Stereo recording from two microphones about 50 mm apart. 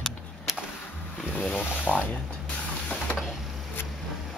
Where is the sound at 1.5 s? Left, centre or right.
Left.